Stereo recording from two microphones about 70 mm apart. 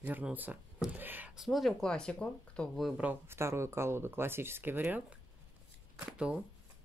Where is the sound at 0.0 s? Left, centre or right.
Right.